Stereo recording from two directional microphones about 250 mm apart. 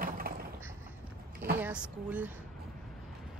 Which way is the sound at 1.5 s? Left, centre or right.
Centre.